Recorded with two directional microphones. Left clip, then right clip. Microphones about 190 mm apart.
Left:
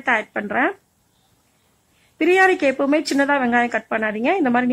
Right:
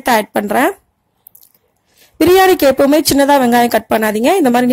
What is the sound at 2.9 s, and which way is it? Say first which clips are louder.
Speech: right 8 dB; 40° right (ahead or behind).